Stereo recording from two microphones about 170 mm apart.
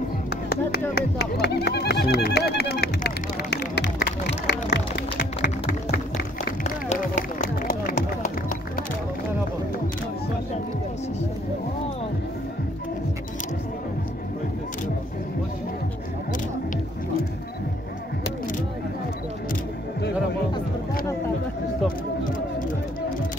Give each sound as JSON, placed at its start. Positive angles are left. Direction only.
{"t": 0.3, "sound": "music", "side_deg": 70}
{"t": 6.6, "sound": "run", "side_deg": 45}